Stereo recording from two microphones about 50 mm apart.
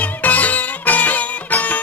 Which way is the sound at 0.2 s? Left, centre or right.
Left.